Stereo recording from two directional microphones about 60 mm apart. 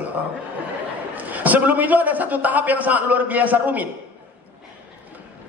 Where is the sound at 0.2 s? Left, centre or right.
Right.